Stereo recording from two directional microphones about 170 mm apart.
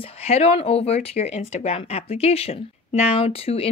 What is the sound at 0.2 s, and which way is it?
Speech, 40° left (ahead or behind).